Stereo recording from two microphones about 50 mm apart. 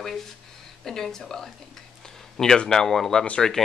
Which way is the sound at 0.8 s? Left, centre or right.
Centre.